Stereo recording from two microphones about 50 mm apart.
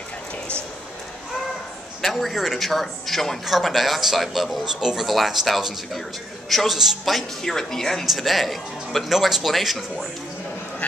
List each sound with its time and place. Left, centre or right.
2.0 s speech: centre
5.0 s speech: centre
7.4 s speech: centre
8.0 s speech: centre